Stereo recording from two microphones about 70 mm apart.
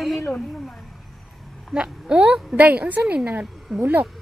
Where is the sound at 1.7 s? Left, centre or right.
Centre.